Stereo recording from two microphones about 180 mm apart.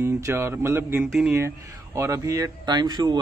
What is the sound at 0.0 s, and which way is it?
A man's voice, 15° right (ahead or behind).